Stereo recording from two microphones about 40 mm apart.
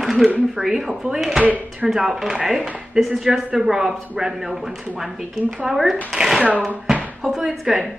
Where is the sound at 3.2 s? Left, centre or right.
Centre.